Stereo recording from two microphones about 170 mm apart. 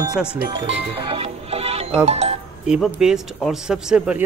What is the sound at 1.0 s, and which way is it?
Music, 35° right (ahead or behind).